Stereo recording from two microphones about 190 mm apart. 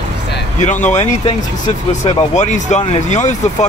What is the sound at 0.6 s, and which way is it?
Speech, 40° left (ahead or behind).